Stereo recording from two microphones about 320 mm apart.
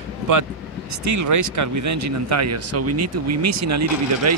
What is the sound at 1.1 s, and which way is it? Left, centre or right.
Speech, right.